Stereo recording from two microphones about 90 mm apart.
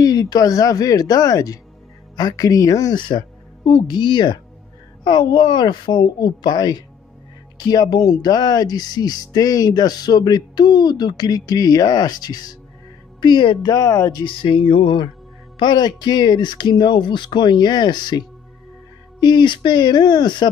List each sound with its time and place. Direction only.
0.0 s speech: 45° left (ahead or behind)
3.1 s speech: 55° left (ahead or behind)
13.6 s speech: 40° left (ahead or behind)
14.2 s music: 75° left (ahead or behind)
15.6 s speech: 55° left (ahead or behind)